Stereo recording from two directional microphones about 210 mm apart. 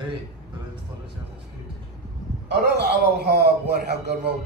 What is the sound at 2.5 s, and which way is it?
A man's voice, 50° right (ahead or behind).